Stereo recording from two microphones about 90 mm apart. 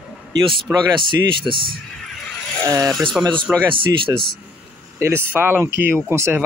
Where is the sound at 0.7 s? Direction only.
25° right (ahead or behind).